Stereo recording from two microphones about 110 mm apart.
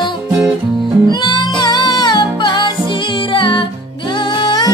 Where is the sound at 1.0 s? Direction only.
40° left (ahead or behind).